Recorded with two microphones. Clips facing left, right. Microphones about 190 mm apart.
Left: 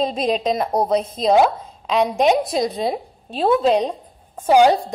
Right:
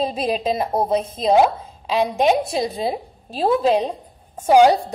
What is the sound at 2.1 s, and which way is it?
A woman's voice, centre (ahead or behind).